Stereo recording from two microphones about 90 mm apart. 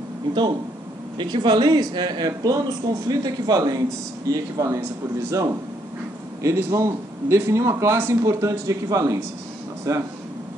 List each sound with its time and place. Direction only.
1.1 s speech: 55° right (ahead or behind); by 10.0 s 40° right (ahead or behind)